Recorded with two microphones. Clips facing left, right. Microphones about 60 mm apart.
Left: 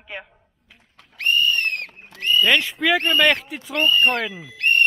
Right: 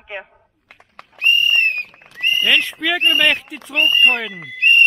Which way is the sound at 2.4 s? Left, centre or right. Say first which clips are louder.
Even; centre.